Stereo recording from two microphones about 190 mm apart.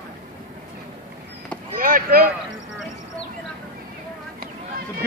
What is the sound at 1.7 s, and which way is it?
Boat, 45° right (ahead or behind).